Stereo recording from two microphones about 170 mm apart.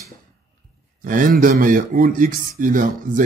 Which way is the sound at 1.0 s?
55° right (ahead or behind).